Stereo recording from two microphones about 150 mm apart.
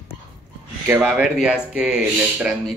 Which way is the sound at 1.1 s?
5° right (ahead or behind).